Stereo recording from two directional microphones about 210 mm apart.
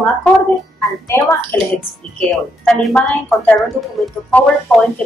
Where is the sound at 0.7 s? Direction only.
10° left (ahead or behind).